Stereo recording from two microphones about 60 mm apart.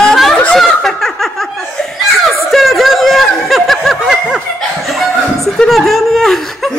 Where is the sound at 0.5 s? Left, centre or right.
Centre.